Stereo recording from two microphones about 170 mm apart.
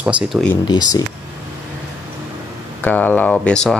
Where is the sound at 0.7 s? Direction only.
25° left (ahead or behind).